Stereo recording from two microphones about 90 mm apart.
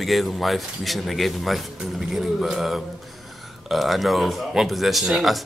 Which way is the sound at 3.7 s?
Centre (ahead or behind).